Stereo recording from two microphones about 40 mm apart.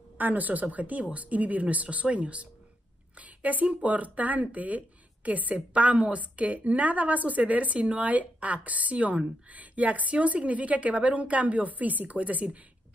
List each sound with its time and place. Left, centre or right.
0.2 s speech: right